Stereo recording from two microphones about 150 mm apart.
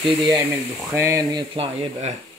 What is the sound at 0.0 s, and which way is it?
Speech, 30° right (ahead or behind).